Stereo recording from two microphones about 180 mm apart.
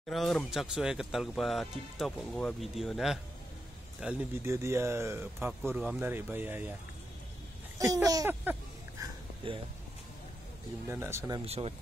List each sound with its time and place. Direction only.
0.1 s speech: centre (ahead or behind)
7.8 s a sound: 20° right (ahead or behind)
9.4 s speech: 30° right (ahead or behind)
10.9 s speech: 15° right (ahead or behind)
11.4 s speech: 35° right (ahead or behind)